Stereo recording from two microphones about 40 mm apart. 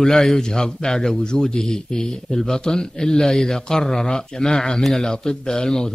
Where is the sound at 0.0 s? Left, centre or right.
Centre.